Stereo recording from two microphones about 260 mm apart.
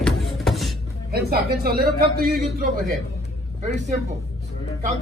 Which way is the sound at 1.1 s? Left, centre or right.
Right.